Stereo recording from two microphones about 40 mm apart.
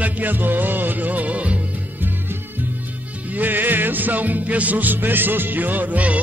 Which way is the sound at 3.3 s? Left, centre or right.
Right.